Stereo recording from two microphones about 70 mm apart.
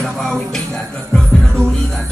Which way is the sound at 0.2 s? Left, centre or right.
Centre.